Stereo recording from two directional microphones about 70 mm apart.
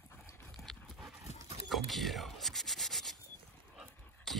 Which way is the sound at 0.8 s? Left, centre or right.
Centre.